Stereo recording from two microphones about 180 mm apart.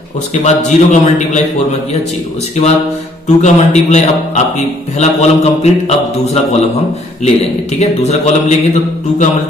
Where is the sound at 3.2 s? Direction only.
40° left (ahead or behind).